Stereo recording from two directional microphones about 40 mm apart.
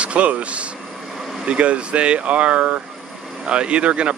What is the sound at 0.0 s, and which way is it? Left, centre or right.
Speech, right.